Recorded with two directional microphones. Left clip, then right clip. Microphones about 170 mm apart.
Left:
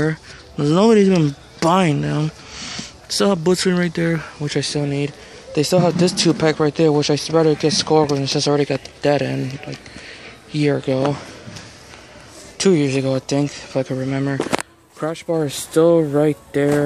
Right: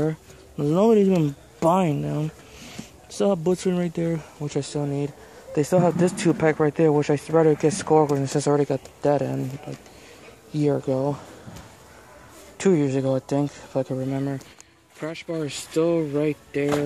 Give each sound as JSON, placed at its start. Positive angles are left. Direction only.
{"t": 0.0, "sound": "speech", "side_deg": -5}
{"t": 12.5, "sound": "speech", "side_deg": -10}